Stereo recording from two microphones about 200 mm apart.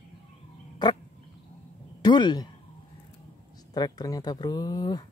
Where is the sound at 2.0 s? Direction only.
20° left (ahead or behind).